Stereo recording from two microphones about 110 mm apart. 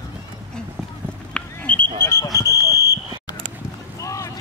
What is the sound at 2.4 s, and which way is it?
Fire alarm, 30° left (ahead or behind).